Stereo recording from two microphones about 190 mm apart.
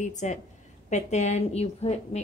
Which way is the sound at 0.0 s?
40° left (ahead or behind).